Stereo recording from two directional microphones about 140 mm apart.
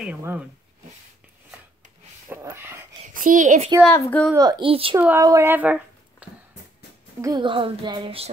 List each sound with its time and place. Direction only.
0.2 s speech: 15° right (ahead or behind)
2.2 s a sound: 15° right (ahead or behind)
3.1 s a child's voice: 65° right (ahead or behind)
3.9 s a woman's voice: 15° left (ahead or behind)
4.4 s speech: 25° right (ahead or behind)
4.6 s a child's voice: 40° right (ahead or behind)
4.9 s speech: 15° right (ahead or behind)
7.2 s a child's voice: 30° right (ahead or behind)